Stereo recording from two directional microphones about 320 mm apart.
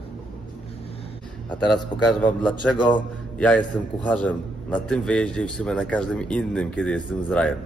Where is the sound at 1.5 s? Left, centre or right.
Centre.